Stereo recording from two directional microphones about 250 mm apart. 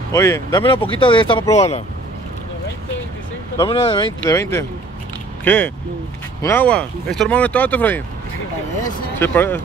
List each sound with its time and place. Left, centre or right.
0.1 s speech: centre
3.5 s speech: left
9.2 s speech: centre